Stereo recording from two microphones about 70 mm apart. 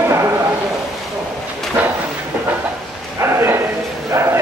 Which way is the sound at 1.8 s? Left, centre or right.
Right.